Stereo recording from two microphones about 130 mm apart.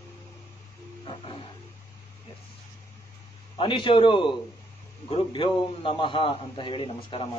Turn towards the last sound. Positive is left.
turn(degrees=40)  # may be behind; listen again after turning